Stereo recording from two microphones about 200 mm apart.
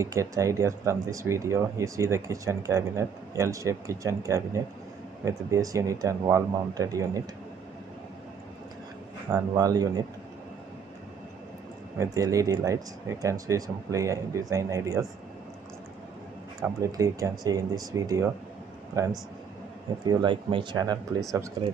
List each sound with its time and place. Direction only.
0.0 s speech: 15° right (ahead or behind)
9.3 s speech: 20° right (ahead or behind)
12.0 s speech: 15° right (ahead or behind)
16.6 s speech: 15° right (ahead or behind)